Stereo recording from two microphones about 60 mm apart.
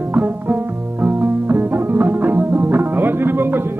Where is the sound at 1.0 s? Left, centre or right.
Right.